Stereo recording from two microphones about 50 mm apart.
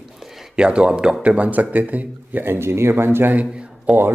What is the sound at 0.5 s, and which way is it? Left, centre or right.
Speech, right.